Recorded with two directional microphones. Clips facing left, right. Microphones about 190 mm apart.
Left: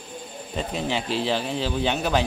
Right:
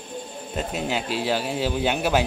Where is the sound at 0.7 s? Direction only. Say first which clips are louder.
Left 1 dB; 5° right (ahead or behind).